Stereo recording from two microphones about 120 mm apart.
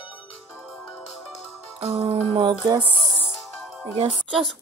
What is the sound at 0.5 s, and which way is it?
Music, centre (ahead or behind).